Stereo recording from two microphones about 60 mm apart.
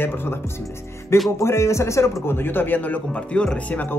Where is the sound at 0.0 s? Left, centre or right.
Left.